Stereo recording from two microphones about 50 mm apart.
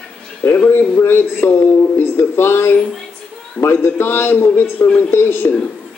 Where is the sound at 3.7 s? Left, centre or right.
Left.